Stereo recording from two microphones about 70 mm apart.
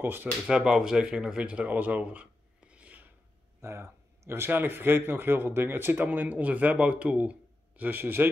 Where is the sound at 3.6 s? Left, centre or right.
Right.